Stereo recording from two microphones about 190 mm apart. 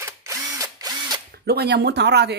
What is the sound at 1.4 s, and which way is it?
Speech, 60° right (ahead or behind).